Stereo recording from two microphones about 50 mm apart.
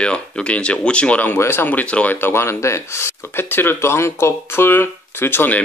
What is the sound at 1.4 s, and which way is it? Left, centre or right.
Speech, left.